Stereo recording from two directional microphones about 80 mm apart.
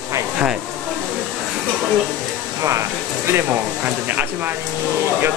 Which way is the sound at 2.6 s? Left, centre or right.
Right.